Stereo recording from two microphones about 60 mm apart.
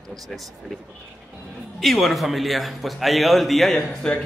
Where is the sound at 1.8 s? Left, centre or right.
Centre.